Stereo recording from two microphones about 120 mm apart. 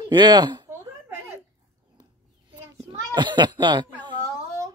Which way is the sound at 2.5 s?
35° right (ahead or behind).